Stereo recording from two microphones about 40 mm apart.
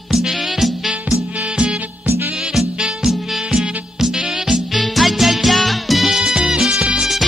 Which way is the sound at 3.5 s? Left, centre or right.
Centre.